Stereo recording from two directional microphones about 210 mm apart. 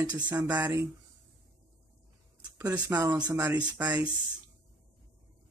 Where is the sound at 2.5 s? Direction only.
15° right (ahead or behind).